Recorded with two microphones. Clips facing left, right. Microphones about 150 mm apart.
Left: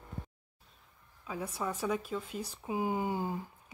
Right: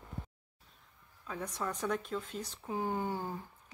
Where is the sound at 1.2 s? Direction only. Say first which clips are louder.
Left 2 dB; 10° left (ahead or behind).